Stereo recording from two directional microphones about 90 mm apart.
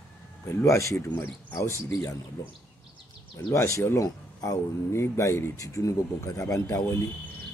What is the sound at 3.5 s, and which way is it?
Speech, 30° left (ahead or behind).